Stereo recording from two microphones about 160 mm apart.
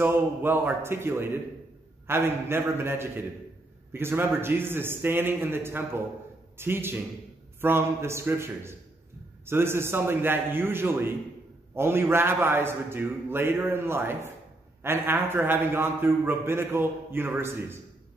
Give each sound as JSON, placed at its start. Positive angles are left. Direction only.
{"t": 0.0, "sound": "a man's voice", "side_deg": -15}